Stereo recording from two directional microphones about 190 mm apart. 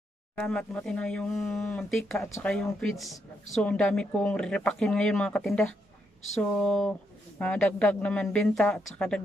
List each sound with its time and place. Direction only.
0.4 s a woman's voice: 5° left (ahead or behind)
2.2 s speech: 15° left (ahead or behind)
2.5 s a woman's voice: centre (ahead or behind)